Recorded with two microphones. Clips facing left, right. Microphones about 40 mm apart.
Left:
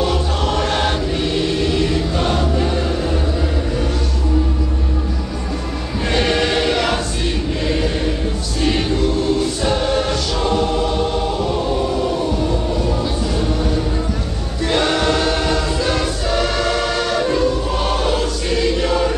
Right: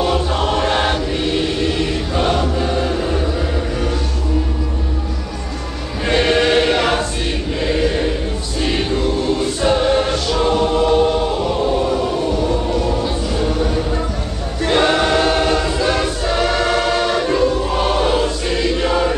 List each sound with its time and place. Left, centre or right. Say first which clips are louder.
0.0 s music: right 2 dB; centre
6.0 s choir: right 3 dB; centre
11.5 s a sound: right 2 dB; centre
14.7 s choir: right 2 dB; centre